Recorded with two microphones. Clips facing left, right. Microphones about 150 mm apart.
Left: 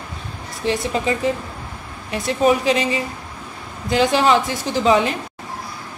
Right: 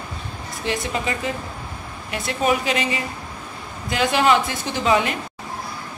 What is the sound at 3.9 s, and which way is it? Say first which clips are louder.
Speech: left 3 dB; 35° left (ahead or behind).